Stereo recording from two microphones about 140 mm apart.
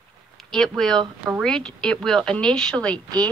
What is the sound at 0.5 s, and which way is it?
Speech, centre (ahead or behind).